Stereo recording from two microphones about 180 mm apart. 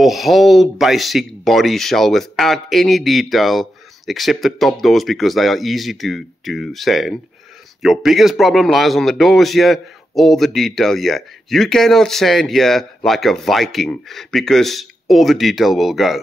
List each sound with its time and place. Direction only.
0.0 s a man's voice: centre (ahead or behind)